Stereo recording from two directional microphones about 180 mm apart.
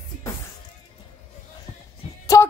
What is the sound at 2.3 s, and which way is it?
Music, 15° left (ahead or behind).